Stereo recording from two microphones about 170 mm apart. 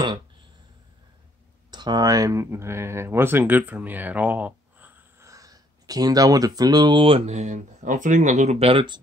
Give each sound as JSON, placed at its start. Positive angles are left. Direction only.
{"t": 1.7, "sound": "speech", "side_deg": -25}